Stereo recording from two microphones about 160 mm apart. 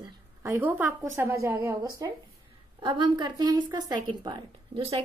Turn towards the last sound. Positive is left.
turn(degrees=-35)  # may be behind; listen again after turning